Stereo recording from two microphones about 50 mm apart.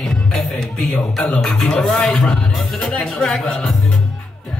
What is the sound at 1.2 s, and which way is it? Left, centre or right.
Music, left.